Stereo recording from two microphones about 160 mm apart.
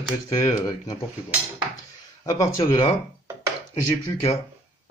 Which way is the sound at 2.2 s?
20° left (ahead or behind).